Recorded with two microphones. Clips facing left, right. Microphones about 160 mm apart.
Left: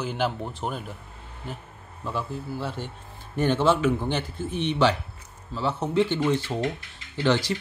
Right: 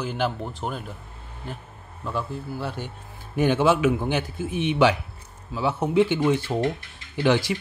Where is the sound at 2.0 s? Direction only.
Centre (ahead or behind).